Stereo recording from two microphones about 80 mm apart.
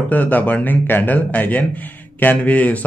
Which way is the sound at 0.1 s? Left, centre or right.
Centre.